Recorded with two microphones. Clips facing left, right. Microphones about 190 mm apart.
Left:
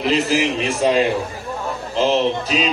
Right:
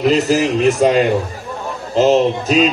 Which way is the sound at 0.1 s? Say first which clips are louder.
Right 4 dB; 45° right (ahead or behind).